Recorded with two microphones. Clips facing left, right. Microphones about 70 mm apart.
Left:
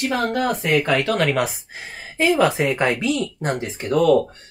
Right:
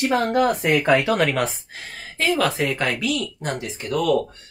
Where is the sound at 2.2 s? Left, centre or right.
Centre.